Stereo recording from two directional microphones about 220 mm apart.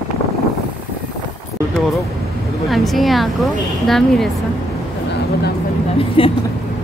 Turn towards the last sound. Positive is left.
turn(degrees=25)  # may be behind; listen again after turning